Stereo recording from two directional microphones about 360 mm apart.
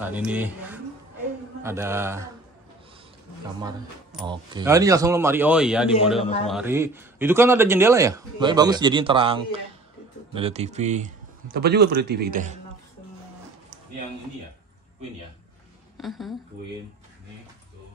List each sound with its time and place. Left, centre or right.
0.0 s a man's voice: centre
3.6 s a man's voice: centre; by 12.5 s right
16.0 s speech: centre